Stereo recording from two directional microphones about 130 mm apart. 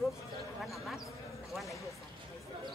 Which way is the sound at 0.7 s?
Centre (ahead or behind).